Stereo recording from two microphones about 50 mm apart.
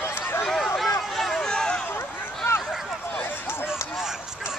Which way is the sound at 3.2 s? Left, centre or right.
Left.